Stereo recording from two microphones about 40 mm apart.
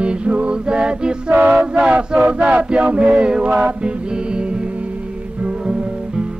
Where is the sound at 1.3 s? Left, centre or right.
Right.